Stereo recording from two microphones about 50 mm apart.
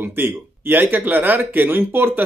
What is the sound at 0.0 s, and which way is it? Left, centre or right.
Speech, right.